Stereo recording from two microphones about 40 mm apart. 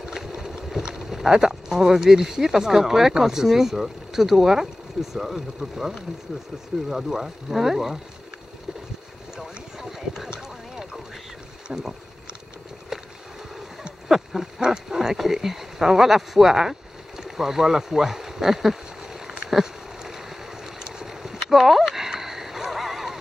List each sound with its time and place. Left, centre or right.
0.0 s boat: centre
0.7 s speech: centre
9.4 s a sound: centre
11.6 s boat: centre
14.0 s speech: centre
17.2 s a sound: centre
19.5 s boat: centre